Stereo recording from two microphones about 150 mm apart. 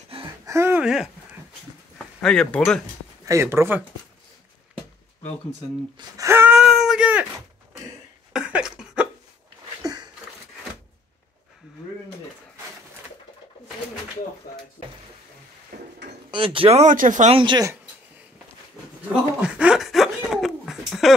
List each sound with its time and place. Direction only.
0.1 s gasp: 40° right (ahead or behind)
0.5 s a sound: 15° right (ahead or behind)
0.8 s speech: 5° right (ahead or behind)
2.2 s speech: 5° left (ahead or behind)
3.3 s speech: 20° right (ahead or behind)
5.9 s speech: 20° right (ahead or behind)
6.5 s a sound: 5° right (ahead or behind)
8.3 s a sound: 5° right (ahead or behind)
16.3 s speech: 35° right (ahead or behind)
16.9 s speech: 60° right (ahead or behind)
17.3 s speech: 35° right (ahead or behind)
19.4 s a sound: 5° right (ahead or behind)